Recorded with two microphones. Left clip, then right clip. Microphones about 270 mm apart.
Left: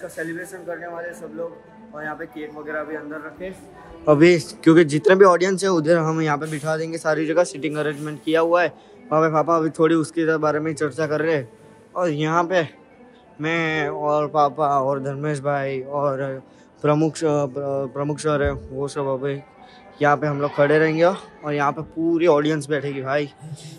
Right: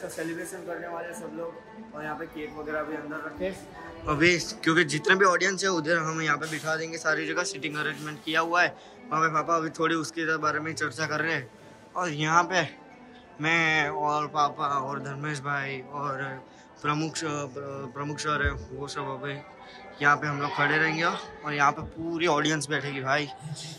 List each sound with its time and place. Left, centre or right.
3.4 s speech: right
4.0 s a man's voice: centre